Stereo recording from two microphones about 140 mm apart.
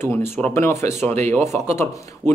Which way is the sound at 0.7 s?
55° right (ahead or behind).